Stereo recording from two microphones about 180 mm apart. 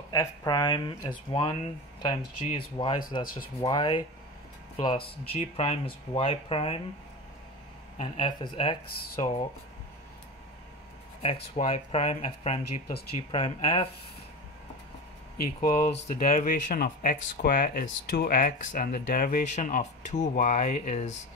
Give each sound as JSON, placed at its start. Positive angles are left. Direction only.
{"t": 0.1, "sound": "speech", "side_deg": 20}
{"t": 8.0, "sound": "speech", "side_deg": 30}
{"t": 11.2, "sound": "speech", "side_deg": 35}
{"t": 15.6, "sound": "speech", "side_deg": 55}